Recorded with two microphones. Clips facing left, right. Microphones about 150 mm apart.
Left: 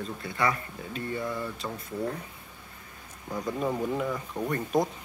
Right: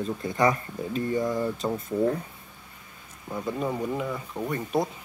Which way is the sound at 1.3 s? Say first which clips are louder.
Right 6 dB; 40° right (ahead or behind).